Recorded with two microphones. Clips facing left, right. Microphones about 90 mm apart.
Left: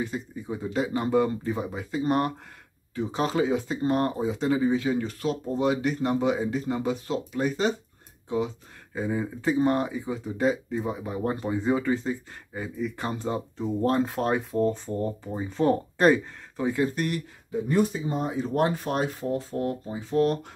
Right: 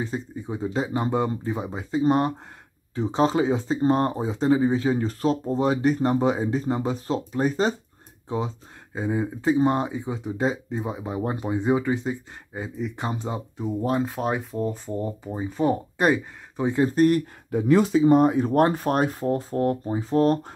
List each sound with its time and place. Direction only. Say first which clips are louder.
0.0 s speech: right 2 dB; 25° right (ahead or behind)
9.0 s speech: right 3 dB; 20° right (ahead or behind)
13.7 s speech: left 1 dB; 5° right (ahead or behind); by 17.2 s 35° right (ahead or behind)
17.5 s speech: right 5 dB; 80° right; by 20.5 s 35° right (ahead or behind)